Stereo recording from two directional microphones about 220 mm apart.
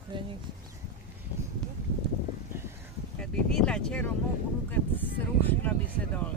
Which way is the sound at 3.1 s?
5° left (ahead or behind).